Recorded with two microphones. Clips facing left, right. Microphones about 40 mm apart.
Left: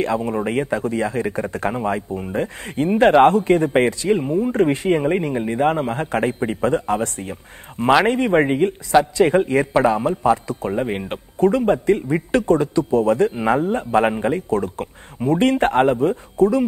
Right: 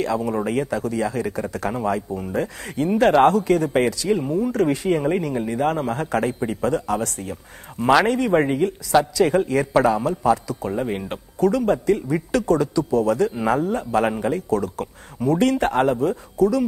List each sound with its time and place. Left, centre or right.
0.0 s a man's voice: left